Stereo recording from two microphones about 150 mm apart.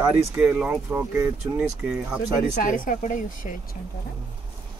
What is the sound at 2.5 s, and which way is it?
Speech, 65° left (ahead or behind).